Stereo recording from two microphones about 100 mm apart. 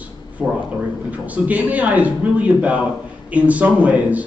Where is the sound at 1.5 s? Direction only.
15° right (ahead or behind).